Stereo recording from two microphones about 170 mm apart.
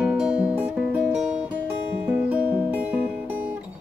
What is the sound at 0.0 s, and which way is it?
Music, 5° right (ahead or behind).